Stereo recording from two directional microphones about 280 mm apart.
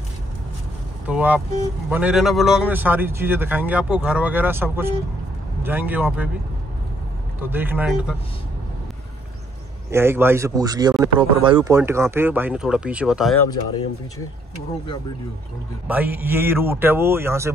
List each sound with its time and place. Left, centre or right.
1.0 s speech: centre
7.3 s a man's voice: centre
9.8 s a man's voice: centre
15.9 s a man's voice: centre